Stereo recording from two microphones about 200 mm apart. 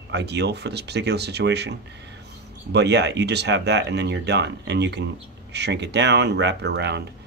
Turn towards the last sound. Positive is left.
turn(degrees=-55)  # may be behind; listen again after turning